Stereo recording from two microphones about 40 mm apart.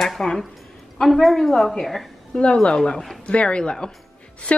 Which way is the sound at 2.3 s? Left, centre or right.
Left.